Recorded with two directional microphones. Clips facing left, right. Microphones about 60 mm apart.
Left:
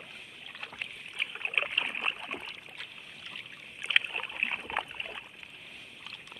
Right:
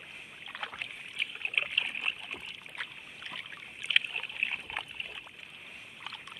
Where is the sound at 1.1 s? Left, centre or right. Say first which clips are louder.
Left 1 dB; left.